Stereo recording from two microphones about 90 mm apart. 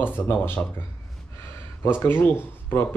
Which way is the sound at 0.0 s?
20° left (ahead or behind).